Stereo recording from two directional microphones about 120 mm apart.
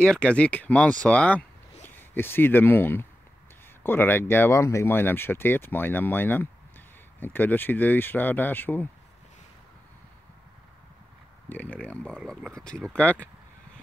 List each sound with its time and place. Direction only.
0.0 s speech: 10° left (ahead or behind)
11.4 s speech: 15° left (ahead or behind)